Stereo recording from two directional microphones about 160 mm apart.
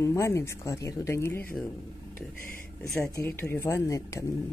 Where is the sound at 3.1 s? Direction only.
15° left (ahead or behind).